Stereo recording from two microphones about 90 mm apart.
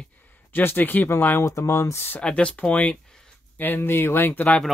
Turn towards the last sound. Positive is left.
turn(degrees=20)  # may be behind; listen again after turning